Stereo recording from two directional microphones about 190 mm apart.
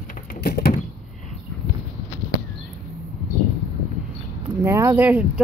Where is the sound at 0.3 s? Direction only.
55° left (ahead or behind).